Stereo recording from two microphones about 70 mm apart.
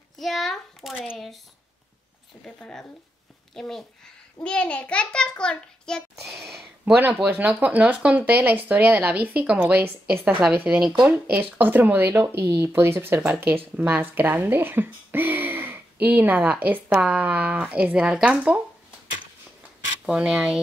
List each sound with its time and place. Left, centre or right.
0.2 s a sound: centre
2.4 s a child's voice: centre
6.2 s a sound: centre
6.8 s speech: right
9.8 s speech: right
12.4 s speech: right
13.3 s speech: right
20.1 s speech: centre